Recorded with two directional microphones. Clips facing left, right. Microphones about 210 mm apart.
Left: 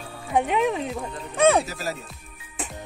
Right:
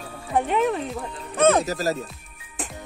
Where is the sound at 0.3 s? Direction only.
Centre (ahead or behind).